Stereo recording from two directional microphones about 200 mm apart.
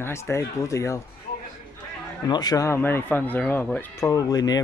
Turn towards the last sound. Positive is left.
turn(degrees=20)  # may be behind; listen again after turning